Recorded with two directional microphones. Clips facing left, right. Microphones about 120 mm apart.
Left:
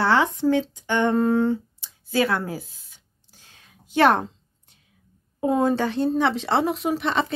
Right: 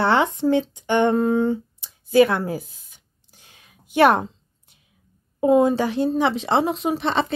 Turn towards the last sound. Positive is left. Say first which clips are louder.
# right 2 dB
turn(degrees=-30)  # may be behind; listen again after turning